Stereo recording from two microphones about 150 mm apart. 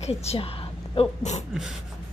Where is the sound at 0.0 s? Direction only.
45° left (ahead or behind).